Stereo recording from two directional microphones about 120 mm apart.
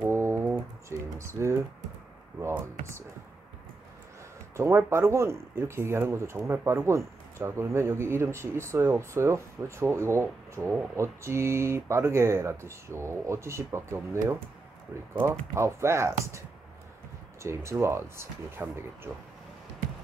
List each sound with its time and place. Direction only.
0.0 s typing: 20° right (ahead or behind)
1.2 s speech: 25° right (ahead or behind)
4.6 s speech: 20° right (ahead or behind)